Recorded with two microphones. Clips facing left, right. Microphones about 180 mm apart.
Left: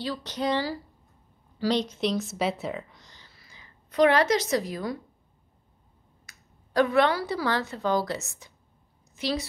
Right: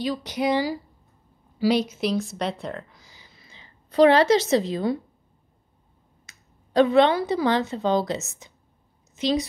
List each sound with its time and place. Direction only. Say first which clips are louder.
0.0 s speech: right 4 dB; 15° right (ahead or behind)
3.3 s a woman's voice: right 3 dB; 20° right (ahead or behind)
6.2 s a woman's voice: even; 25° right (ahead or behind)